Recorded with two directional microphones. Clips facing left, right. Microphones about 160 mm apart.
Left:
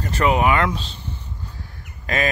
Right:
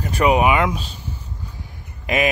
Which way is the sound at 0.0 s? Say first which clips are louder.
Right 2 dB; 15° right (ahead or behind).